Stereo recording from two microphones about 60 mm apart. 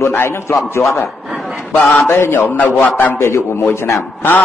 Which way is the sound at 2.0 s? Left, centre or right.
Left.